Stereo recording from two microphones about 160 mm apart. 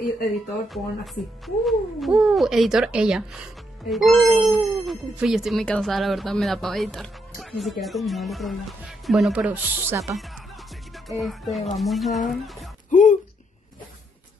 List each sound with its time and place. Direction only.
0.7 s speech: centre (ahead or behind); by 10.1 s 15° right (ahead or behind)
10.1 s speech: centre (ahead or behind)
12.9 s a sound: 50° left (ahead or behind)